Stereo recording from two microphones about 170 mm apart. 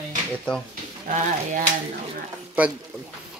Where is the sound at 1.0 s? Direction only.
50° right (ahead or behind).